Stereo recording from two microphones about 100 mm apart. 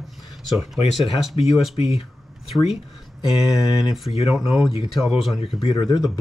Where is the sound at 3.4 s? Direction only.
40° left (ahead or behind).